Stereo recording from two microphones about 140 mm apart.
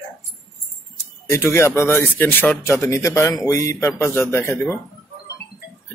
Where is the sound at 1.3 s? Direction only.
20° left (ahead or behind).